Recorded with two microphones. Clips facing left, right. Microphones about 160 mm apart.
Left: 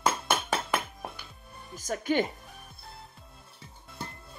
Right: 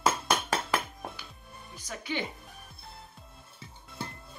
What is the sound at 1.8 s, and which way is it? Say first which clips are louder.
Speech: left 8 dB; 45° left (ahead or behind).